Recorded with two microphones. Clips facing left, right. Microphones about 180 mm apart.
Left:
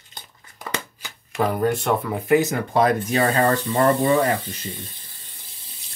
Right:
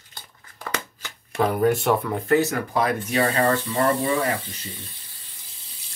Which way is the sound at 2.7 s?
35° left (ahead or behind).